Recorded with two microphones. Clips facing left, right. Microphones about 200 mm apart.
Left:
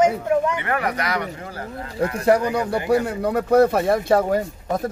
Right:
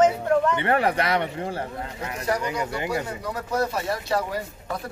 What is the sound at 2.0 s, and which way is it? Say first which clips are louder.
Speech: left 9 dB; 60° left (ahead or behind).